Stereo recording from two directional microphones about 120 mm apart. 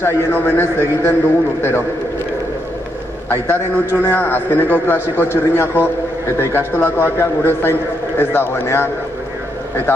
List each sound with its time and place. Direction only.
0.0 s a man's voice: 20° left (ahead or behind)
3.3 s a man's voice: 15° left (ahead or behind)